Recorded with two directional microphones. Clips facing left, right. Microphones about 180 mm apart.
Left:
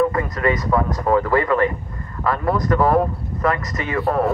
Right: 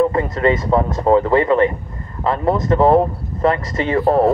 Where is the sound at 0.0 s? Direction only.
30° right (ahead or behind).